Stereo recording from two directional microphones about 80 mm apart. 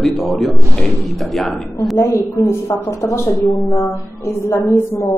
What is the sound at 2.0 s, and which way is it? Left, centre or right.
A woman's voice, left.